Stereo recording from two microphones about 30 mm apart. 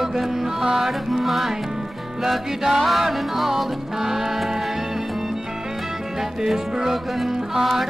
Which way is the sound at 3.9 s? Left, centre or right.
Centre.